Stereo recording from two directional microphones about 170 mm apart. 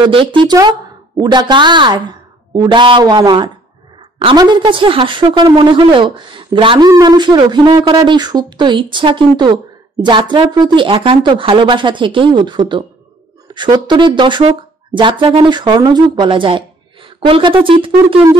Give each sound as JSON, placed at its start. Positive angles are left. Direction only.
{"t": 0.0, "sound": "speech", "side_deg": -30}